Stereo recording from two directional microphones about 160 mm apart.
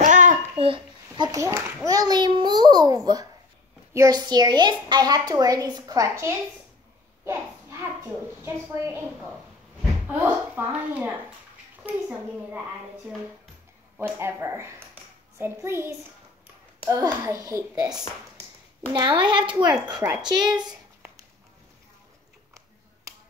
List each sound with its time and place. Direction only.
0.0 s child singing: 50° right (ahead or behind)
1.1 s a child's voice: 25° right (ahead or behind)
8.4 s a woman's voice: 15° right (ahead or behind)
13.9 s a woman's voice: 15° right (ahead or behind)
18.9 s a child's voice: 30° right (ahead or behind)
20.2 s a child's voice: 25° right (ahead or behind)